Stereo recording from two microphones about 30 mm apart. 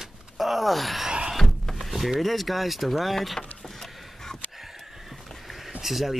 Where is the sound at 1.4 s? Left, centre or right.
Centre.